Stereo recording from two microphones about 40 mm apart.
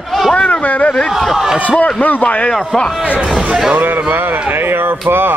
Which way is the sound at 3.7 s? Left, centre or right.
Right.